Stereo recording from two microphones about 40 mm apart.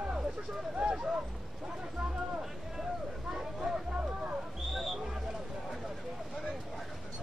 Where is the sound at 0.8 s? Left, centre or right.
Right.